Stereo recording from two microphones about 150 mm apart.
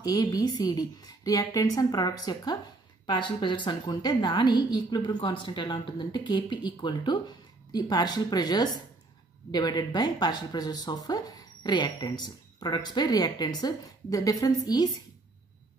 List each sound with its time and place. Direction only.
0.0 s a woman's voice: 25° left (ahead or behind)